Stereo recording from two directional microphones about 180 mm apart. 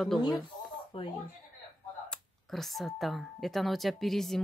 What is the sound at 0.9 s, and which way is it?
Speech, 30° left (ahead or behind).